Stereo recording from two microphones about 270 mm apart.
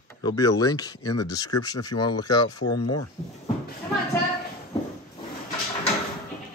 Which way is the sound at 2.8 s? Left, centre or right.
Left.